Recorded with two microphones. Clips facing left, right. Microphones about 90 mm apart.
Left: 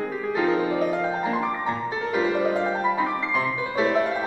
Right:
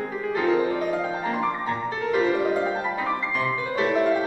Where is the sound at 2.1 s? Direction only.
5° left (ahead or behind).